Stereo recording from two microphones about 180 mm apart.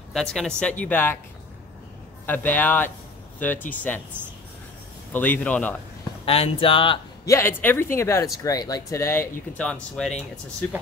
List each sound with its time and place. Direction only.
0.1 s speech: centre (ahead or behind)
2.2 s speech: 10° left (ahead or behind)
5.1 s speech: 10° left (ahead or behind)
6.2 s speech: 30° left (ahead or behind)
7.2 s speech: 15° left (ahead or behind)